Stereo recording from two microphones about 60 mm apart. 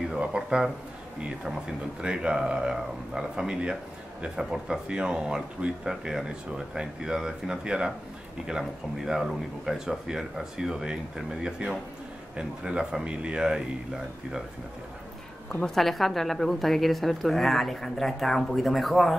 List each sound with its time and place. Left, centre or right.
0.1 s speech: centre
15.6 s a woman's voice: centre